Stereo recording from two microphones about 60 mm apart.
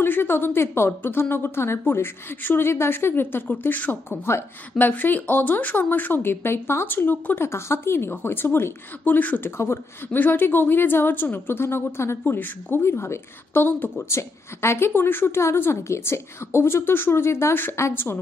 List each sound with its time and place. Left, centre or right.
0.0 s a woman's voice: left
7.4 s a woman's voice: left
12.3 s a woman's voice: left
12.8 s a woman's voice: left
13.5 s a woman's voice: left
14.0 s a woman's voice: left